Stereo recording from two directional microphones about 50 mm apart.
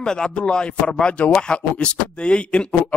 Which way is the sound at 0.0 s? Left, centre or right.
Centre.